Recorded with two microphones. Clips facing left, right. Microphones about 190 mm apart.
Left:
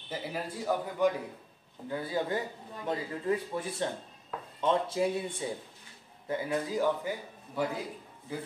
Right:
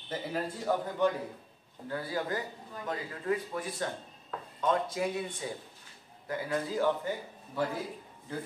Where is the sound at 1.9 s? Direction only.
20° left (ahead or behind).